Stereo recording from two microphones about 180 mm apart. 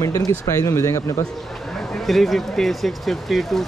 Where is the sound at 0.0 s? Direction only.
15° left (ahead or behind).